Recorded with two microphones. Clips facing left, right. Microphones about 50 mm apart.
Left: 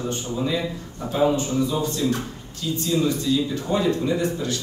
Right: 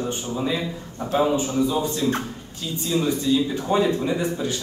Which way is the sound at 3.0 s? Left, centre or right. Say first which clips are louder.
Right 1 dB; right.